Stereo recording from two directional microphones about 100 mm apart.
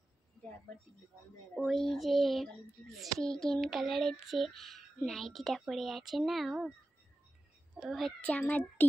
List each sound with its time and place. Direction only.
1.5 s speech: 5° left (ahead or behind)
7.8 s speech: centre (ahead or behind)
8.2 s a child's voice: 15° left (ahead or behind)